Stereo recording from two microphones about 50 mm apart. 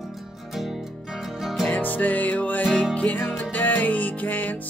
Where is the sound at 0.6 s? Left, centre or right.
Centre.